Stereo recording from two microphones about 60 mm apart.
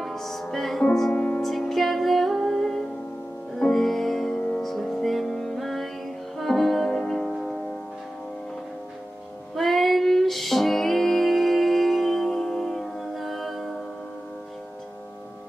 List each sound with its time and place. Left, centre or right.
0.0 s music: centre
1.1 s music: left
1.4 s music: centre
9.6 s music: centre